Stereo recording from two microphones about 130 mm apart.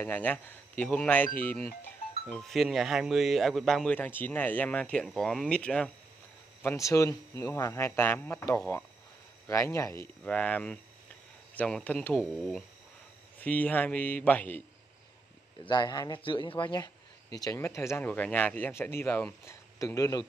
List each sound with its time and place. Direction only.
0.0 s speech: 15° left (ahead or behind)
6.6 s speech: 20° left (ahead or behind)
9.5 s speech: 25° left (ahead or behind)
10.2 s speech: 10° left (ahead or behind)
12.2 s speech: centre (ahead or behind)
13.4 s speech: 15° left (ahead or behind)
15.6 s speech: 35° left (ahead or behind)
17.4 s speech: 25° left (ahead or behind)